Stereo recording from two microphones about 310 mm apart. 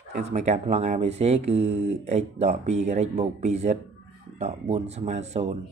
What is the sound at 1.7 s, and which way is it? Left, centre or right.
Speech, right.